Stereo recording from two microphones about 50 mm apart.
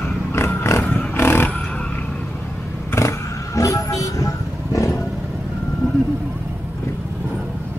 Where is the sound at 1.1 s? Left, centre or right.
Left.